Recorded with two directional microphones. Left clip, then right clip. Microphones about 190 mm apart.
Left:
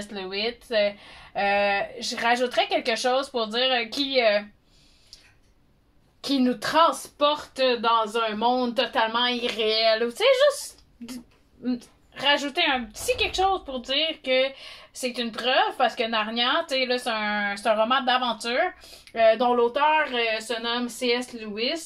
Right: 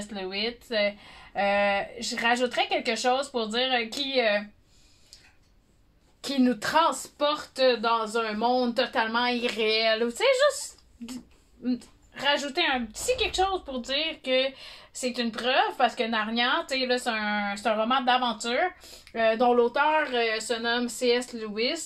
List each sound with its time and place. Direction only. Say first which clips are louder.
0.1 s speech: left 2 dB; 20° right (ahead or behind)
6.2 s a woman's voice: left 2 dB; 30° right (ahead or behind)
11.6 s a woman's voice: left 1 dB; 25° right (ahead or behind); by 21.8 s 40° right (ahead or behind)